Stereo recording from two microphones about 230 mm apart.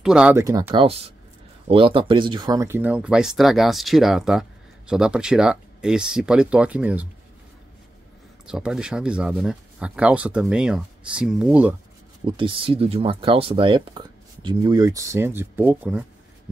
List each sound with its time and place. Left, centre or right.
0.0 s speech: centre
8.5 s speech: centre
12.3 s speech: right